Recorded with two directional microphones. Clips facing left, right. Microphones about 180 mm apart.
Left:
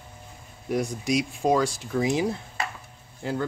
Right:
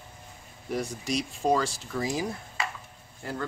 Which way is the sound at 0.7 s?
10° left (ahead or behind).